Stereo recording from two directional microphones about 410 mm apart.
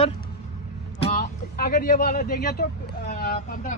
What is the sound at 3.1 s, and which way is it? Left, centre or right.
Vehicle, left.